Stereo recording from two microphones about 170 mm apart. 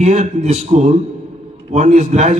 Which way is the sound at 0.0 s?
45° right (ahead or behind).